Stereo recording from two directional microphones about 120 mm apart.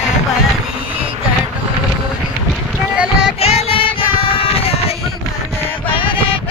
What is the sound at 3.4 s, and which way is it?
Music, 55° left (ahead or behind).